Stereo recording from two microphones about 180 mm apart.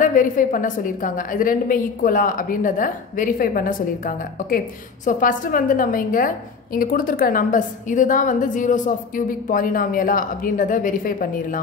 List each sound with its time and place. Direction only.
0.0 s a woman's voice: 50° left (ahead or behind)